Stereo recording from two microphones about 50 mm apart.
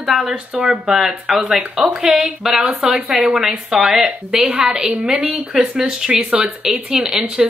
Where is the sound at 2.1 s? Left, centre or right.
Right.